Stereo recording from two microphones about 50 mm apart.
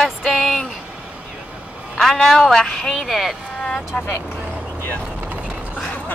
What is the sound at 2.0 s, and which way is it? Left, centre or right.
Music, centre.